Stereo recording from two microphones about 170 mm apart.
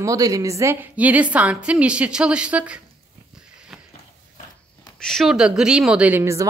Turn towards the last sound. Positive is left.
turn(degrees=-15)  # may be behind; listen again after turning